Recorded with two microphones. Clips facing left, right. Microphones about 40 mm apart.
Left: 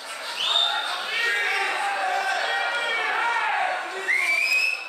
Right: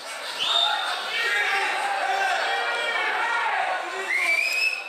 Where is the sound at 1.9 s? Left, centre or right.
Right.